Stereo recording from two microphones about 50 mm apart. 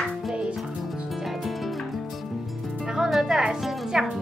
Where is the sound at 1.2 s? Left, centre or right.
Centre.